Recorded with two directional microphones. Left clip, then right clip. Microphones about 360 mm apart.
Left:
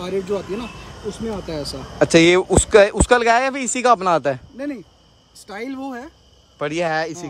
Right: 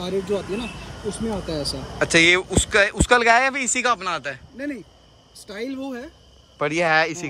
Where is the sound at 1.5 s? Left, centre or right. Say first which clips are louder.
Even; centre.